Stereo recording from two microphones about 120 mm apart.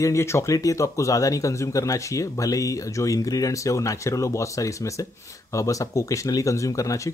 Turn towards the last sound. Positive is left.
turn(degrees=30)  # may be behind; listen again after turning